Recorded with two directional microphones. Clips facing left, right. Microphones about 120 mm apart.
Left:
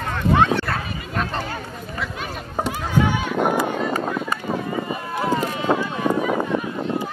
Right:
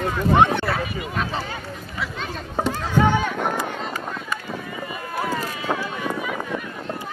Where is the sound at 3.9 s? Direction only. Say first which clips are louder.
Left 6 dB; 45° left (ahead or behind).